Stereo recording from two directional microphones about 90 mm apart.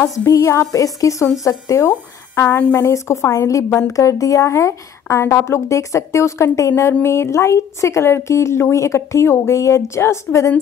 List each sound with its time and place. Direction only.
0.3 s speech: 30° left (ahead or behind)
1.9 s speech: 25° left (ahead or behind)